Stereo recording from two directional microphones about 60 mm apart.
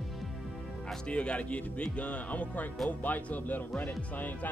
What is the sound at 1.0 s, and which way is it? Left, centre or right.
Speech, centre.